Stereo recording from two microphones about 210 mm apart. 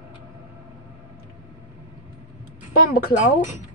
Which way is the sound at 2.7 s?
45° left (ahead or behind).